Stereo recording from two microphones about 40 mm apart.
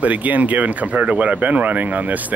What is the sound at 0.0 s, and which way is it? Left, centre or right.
Speech, right.